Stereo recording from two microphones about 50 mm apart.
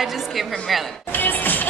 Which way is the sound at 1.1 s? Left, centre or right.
Left.